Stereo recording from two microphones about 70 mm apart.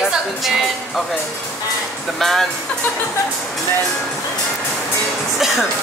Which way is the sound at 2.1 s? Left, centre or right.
Centre.